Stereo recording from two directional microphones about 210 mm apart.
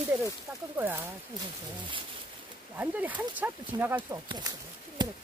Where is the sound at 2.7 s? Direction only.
5° right (ahead or behind).